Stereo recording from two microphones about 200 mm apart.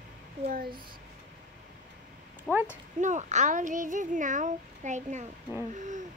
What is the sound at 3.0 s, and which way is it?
A child's voice, 35° right (ahead or behind).